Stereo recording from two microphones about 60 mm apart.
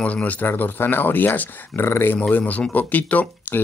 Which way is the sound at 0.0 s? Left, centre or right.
Left.